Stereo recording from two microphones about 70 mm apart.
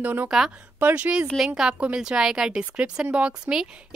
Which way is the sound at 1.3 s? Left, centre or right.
Centre.